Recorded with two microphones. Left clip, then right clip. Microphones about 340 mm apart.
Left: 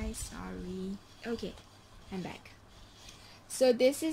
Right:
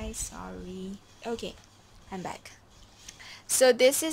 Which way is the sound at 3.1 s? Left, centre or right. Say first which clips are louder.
Right 13 dB; right.